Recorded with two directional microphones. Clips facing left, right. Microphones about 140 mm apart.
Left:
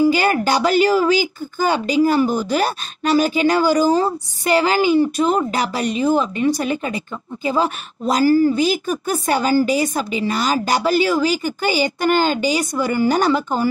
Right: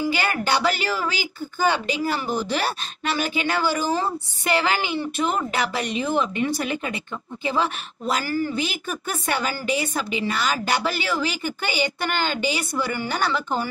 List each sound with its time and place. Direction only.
0.0 s speech: 40° left (ahead or behind)